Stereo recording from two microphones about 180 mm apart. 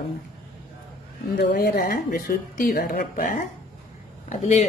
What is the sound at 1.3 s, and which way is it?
A woman's voice, 60° left (ahead or behind).